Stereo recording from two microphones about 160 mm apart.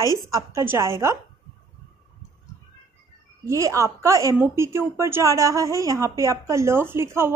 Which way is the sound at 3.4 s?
20° right (ahead or behind).